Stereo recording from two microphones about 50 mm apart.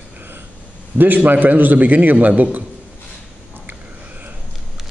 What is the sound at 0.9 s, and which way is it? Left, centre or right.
A man's voice, right.